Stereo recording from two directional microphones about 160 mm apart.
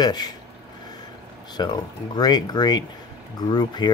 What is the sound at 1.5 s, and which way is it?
Speech, 25° left (ahead or behind).